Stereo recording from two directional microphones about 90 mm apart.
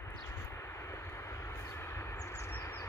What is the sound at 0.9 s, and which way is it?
Vehicle, 30° left (ahead or behind).